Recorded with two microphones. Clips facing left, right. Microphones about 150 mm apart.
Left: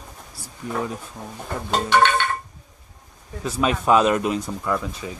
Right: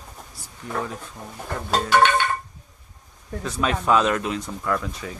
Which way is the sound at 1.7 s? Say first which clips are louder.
Even; 5° right (ahead or behind).